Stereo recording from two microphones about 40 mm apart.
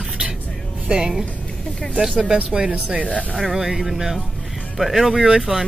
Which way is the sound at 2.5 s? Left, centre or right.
Right.